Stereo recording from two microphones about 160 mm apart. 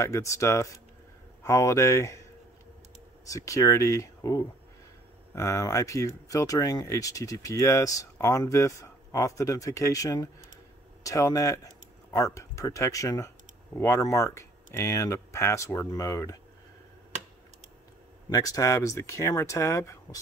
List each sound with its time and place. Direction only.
0.0 s speech: 20° left (ahead or behind)
3.3 s speech: 20° left (ahead or behind)
18.3 s speech: 20° left (ahead or behind)